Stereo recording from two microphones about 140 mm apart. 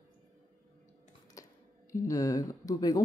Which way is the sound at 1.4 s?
25° left (ahead or behind).